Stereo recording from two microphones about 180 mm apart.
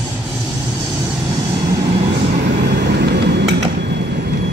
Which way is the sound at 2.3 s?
50° right (ahead or behind).